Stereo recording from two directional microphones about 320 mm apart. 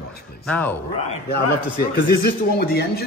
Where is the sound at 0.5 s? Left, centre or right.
Centre.